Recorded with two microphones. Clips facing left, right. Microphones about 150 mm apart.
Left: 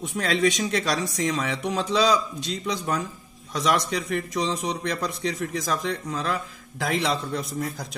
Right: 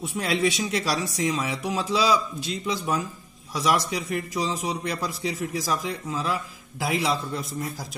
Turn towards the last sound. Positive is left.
turn(degrees=0)  # may be behind; listen again after turning